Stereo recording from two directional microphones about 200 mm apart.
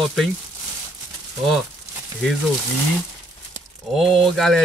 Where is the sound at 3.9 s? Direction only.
Centre (ahead or behind).